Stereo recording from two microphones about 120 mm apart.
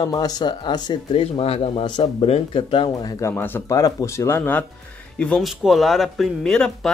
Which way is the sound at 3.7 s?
30° left (ahead or behind).